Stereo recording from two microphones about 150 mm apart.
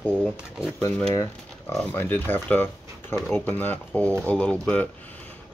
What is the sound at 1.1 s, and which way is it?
Speech, 20° left (ahead or behind).